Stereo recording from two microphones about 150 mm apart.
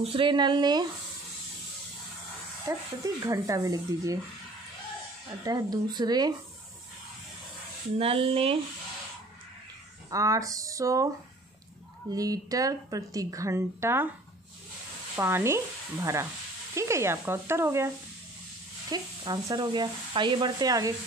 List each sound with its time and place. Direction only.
0.0 s speech: 35° right (ahead or behind)
2.7 s speech: 20° right (ahead or behind)
5.4 s speech: 25° right (ahead or behind)
8.0 s speech: 40° right (ahead or behind)
10.0 s speech: 20° right (ahead or behind)
12.1 s speech: 25° right (ahead or behind)
15.1 s speech: 15° right (ahead or behind)